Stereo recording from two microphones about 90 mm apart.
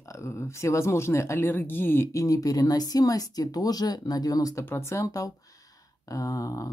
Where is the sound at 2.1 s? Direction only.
40° left (ahead or behind).